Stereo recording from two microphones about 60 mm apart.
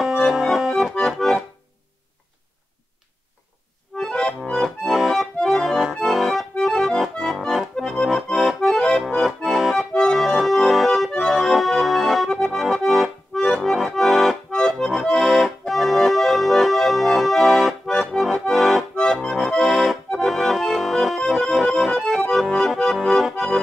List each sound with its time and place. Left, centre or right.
0.0 s accordion: centre
4.1 s accordion: centre
4.5 s accordion: centre
8.5 s accordion: centre
9.0 s accordion: centre